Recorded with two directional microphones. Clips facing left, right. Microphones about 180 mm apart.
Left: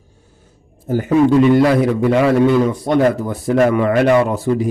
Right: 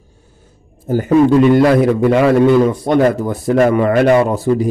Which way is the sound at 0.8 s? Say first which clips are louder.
Right 2 dB; 45° right (ahead or behind).